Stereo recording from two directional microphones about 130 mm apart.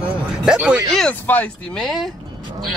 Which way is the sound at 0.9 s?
10° left (ahead or behind).